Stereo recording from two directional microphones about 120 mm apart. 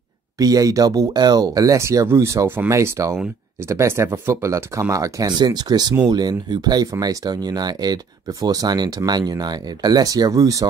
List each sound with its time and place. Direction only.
0.4 s speech: 30° right (ahead or behind)